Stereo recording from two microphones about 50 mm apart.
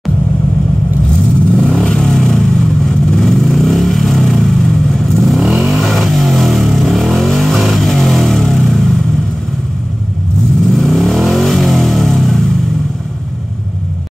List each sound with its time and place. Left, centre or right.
1.5 s vehicle: centre
10.7 s vehicle: centre